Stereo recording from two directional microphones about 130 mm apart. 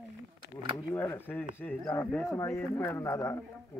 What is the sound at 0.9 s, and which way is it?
A man's voice, 15° left (ahead or behind).